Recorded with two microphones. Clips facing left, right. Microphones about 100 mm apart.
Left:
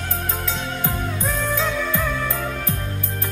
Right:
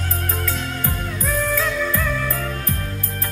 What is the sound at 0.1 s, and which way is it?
Music, 20° left (ahead or behind).